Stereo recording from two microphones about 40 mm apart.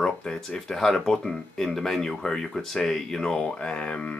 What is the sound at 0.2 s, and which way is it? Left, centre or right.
Speech, centre.